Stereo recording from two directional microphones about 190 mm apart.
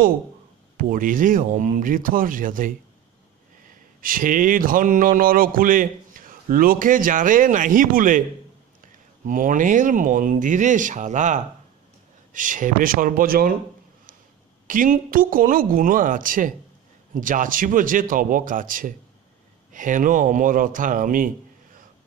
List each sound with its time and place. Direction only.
0.7 s speech: 45° right (ahead or behind)
4.0 s speech: 45° right (ahead or behind)
14.7 s speech: 45° right (ahead or behind)